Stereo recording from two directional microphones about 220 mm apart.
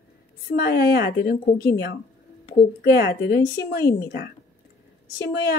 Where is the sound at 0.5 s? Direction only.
45° left (ahead or behind).